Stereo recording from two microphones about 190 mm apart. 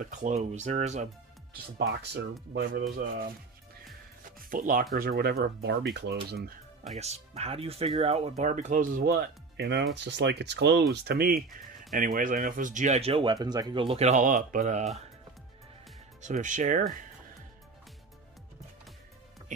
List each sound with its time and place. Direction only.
0.0 s speech: 40° right (ahead or behind)
1.8 s speech: 65° right (ahead or behind)
4.4 s speech: 45° right (ahead or behind)
7.0 s speech: 35° right (ahead or behind)
16.2 s speech: 40° right (ahead or behind)